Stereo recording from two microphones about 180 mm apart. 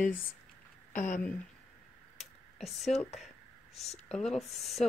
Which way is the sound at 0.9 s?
45° left (ahead or behind).